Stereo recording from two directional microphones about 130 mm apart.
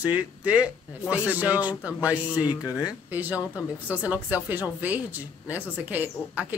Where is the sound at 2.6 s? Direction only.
25° left (ahead or behind).